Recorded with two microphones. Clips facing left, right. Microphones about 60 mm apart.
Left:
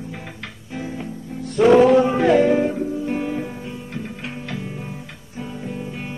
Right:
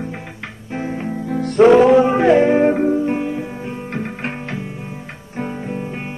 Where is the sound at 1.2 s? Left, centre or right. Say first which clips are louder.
Right 9 dB; right.